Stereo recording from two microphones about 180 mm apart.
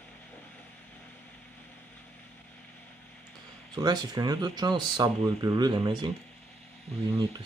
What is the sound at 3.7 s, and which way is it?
Speech, 25° right (ahead or behind).